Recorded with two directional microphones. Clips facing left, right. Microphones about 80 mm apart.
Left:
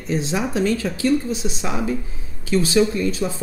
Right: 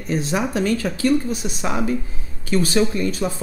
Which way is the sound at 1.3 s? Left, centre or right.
Right.